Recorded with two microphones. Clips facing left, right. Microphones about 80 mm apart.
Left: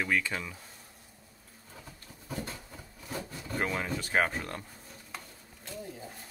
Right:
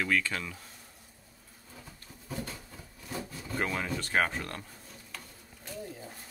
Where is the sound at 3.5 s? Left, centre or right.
Centre.